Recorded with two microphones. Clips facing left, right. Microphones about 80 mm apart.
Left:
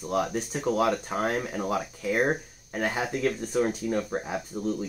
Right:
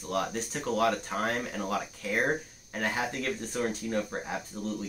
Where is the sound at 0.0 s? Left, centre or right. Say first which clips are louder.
Left 4 dB; centre.